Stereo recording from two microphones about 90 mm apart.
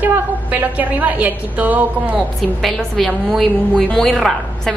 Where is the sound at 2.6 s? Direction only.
5° left (ahead or behind).